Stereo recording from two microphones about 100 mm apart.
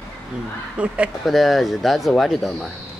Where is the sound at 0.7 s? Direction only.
10° right (ahead or behind).